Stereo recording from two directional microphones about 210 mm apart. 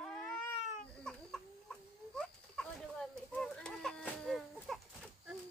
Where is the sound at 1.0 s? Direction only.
5° left (ahead or behind).